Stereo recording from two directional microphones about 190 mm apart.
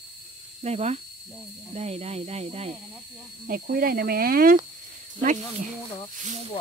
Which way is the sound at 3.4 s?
50° right (ahead or behind).